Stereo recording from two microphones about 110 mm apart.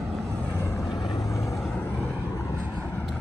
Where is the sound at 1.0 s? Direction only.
35° left (ahead or behind).